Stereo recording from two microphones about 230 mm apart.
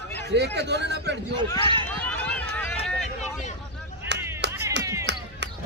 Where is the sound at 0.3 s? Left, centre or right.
Right.